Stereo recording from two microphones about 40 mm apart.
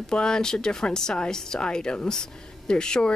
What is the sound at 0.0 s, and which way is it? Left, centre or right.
Speech, centre.